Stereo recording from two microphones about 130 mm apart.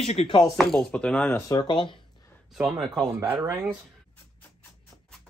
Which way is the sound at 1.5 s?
35° left (ahead or behind).